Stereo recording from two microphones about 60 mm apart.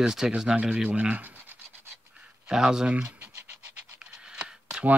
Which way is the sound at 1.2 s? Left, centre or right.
Right.